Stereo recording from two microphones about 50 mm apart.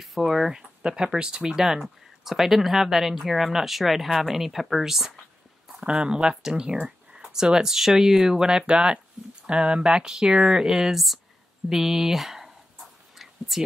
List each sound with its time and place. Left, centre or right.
0.0 s speech: centre
5.9 s speech: centre
11.7 s a sound: centre